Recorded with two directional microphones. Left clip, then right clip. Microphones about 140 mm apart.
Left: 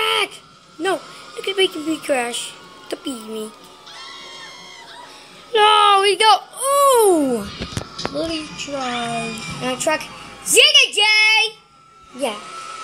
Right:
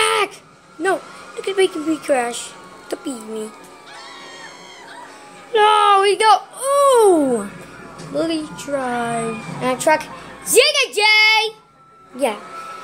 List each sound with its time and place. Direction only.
0.0 s a sound: 10° left (ahead or behind)
0.8 s speech: 10° left (ahead or behind)
5.5 s a woman's voice: 20° left (ahead or behind)